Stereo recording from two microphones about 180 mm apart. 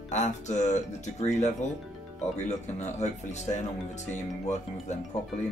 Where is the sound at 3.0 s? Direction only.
40° left (ahead or behind).